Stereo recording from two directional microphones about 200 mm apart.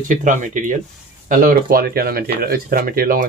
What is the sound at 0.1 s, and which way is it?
Speech, 40° right (ahead or behind).